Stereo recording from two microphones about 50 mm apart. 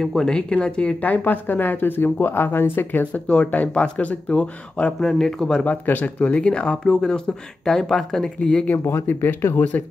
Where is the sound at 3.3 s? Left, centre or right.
Left.